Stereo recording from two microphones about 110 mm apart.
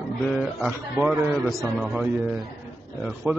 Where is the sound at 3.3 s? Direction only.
15° right (ahead or behind).